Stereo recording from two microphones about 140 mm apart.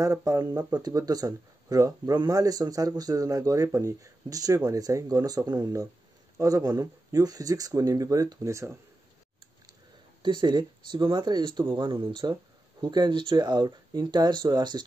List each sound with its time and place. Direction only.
0.0 s speech: 25° right (ahead or behind)
10.2 s speech: 35° right (ahead or behind)